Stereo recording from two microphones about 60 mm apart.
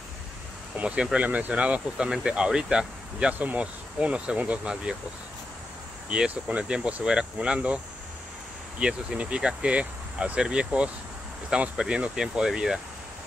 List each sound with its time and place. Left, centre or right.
0.7 s speech: centre
6.0 s speech: centre